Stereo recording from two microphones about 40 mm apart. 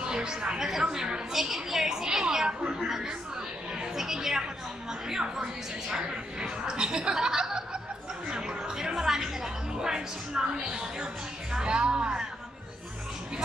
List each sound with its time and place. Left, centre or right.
0.0 s a woman's voice: centre
1.3 s a woman's voice: centre